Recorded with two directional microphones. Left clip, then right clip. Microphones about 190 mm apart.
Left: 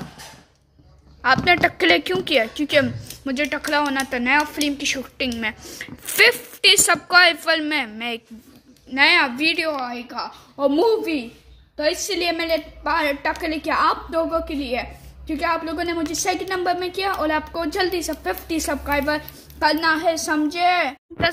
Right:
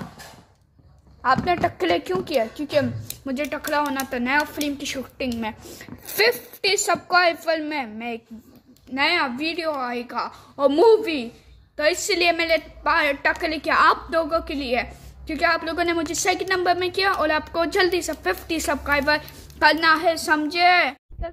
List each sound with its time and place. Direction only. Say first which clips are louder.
1.2 s a woman's voice: left 4 dB; 5° left (ahead or behind)
11.7 s a woman's voice: right 1 dB; 25° right (ahead or behind)
12.2 s a woman's voice: right 2 dB; 5° right (ahead or behind)